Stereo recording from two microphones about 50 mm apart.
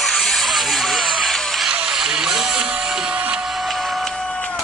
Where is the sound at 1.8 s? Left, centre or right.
Centre.